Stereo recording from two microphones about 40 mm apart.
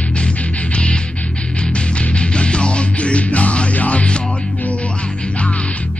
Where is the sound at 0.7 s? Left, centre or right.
Left.